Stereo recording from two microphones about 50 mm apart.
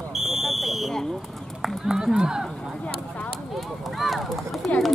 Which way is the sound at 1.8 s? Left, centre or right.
Centre.